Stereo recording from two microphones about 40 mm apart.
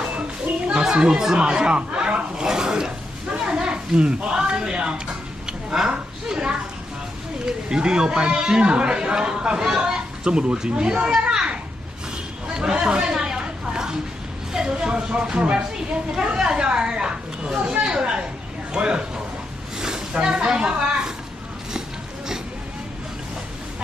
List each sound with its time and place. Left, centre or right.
0.7 s chatter: right
3.3 s a sound: right
7.4 s speech: centre
12.5 s chatter: centre
14.5 s speech: centre